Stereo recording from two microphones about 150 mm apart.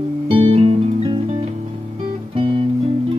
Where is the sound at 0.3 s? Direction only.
35° right (ahead or behind).